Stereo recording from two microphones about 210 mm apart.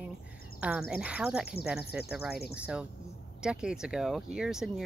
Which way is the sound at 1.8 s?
50° left (ahead or behind).